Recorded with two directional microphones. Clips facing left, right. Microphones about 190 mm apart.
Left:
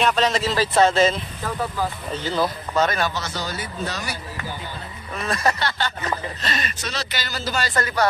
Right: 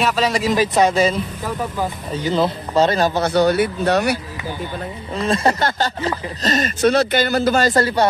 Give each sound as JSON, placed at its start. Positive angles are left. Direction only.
{"t": 0.0, "sound": "speech", "side_deg": -5}
{"t": 3.2, "sound": "speech", "side_deg": -60}
{"t": 5.1, "sound": "speech", "side_deg": -30}
{"t": 5.6, "sound": "speech", "side_deg": -45}
{"t": 6.5, "sound": "speech", "side_deg": -50}
{"t": 7.8, "sound": "speech", "side_deg": -30}